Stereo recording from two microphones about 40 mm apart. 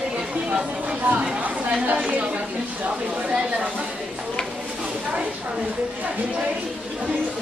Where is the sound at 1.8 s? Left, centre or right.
Right.